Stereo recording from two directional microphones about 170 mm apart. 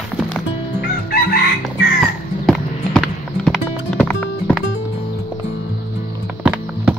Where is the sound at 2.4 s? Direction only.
Centre (ahead or behind).